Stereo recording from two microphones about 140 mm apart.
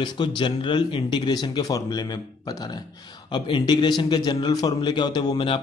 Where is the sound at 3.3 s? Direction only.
35° left (ahead or behind).